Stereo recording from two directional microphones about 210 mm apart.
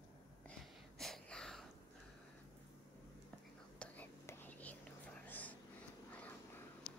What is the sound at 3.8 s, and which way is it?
Whispering, 10° left (ahead or behind).